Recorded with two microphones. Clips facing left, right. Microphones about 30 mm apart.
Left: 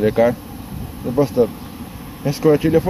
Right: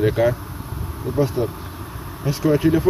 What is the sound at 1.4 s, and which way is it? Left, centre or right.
Speech, left.